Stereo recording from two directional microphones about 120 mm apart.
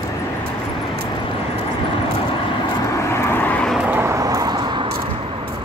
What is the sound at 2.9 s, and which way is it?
Vehicle, 25° left (ahead or behind).